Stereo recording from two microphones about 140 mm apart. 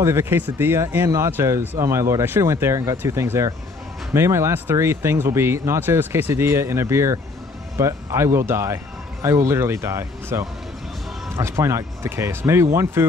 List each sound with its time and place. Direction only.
0.0 s speech: 20° right (ahead or behind)